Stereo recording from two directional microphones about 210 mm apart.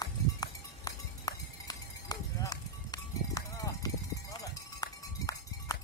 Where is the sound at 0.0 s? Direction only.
20° left (ahead or behind).